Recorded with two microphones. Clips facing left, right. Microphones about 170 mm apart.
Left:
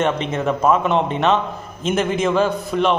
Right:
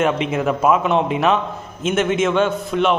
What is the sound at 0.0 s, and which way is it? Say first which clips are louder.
A man's voice: right 1 dB; 5° right (ahead or behind).